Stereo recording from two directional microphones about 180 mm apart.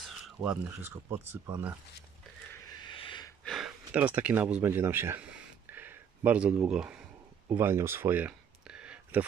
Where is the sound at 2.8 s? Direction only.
25° left (ahead or behind).